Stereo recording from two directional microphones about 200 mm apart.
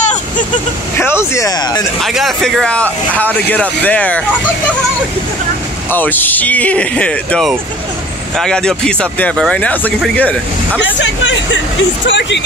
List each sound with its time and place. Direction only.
0.9 s speech: 10° left (ahead or behind)
2.0 s speech: centre (ahead or behind)
5.9 s speech: 10° left (ahead or behind)
10.8 s speech: 65° left (ahead or behind)